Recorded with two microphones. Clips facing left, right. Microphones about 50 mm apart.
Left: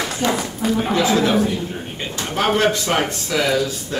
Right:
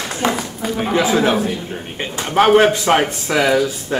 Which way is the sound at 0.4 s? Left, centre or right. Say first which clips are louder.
Left 2 dB; centre.